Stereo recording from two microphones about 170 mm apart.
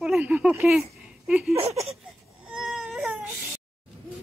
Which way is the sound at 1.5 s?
20° right (ahead or behind).